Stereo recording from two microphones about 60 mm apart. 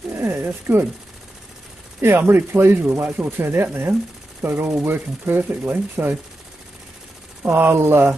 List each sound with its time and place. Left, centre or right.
0.1 s speech: right
2.0 s speech: right
7.4 s speech: right